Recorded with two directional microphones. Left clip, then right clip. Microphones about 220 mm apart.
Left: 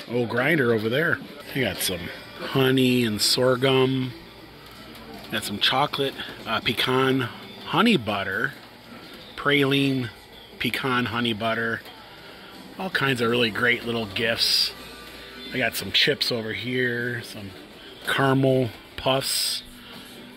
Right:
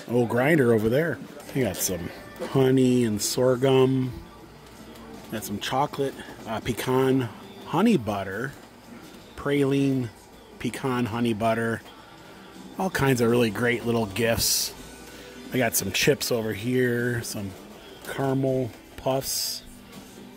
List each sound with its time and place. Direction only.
0.1 s speech: 20° right (ahead or behind)
5.3 s speech: 10° right (ahead or behind)
12.9 s speech: 15° right (ahead or behind)
15.5 s speech: 30° right (ahead or behind)
18.0 s speech: 5° right (ahead or behind)
18.9 s speech: 10° right (ahead or behind)